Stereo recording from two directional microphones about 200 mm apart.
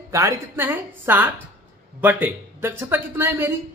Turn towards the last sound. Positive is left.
turn(degrees=-10)  # may be behind; listen again after turning